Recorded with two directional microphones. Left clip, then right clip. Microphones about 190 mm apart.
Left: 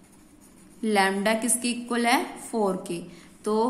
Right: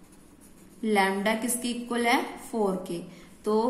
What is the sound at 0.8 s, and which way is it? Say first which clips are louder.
A woman's voice: left 2 dB; 20° left (ahead or behind).